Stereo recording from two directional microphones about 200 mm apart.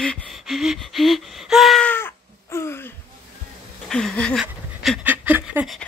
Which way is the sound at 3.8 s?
5° left (ahead or behind).